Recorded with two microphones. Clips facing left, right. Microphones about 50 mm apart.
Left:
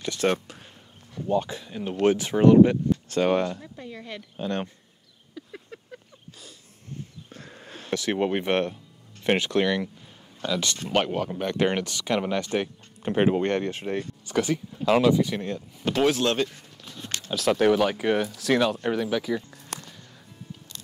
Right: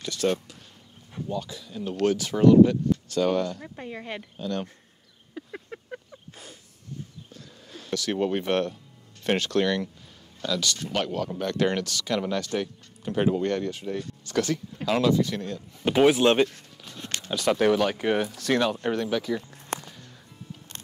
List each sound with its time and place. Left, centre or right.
0.0 s speech: left
3.6 s speech: right
4.4 s speech: left
5.3 s a sound: right
7.2 s a sound: left
7.9 s speech: left
10.4 s speech: left
13.0 s speech: left
14.2 s speech: centre
15.8 s speech: centre
16.4 s walk: centre
17.0 s a sound: right
17.3 s speech: centre
19.7 s music: right